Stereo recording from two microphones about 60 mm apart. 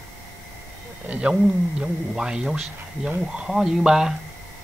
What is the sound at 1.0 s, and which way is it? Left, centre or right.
Speech, right.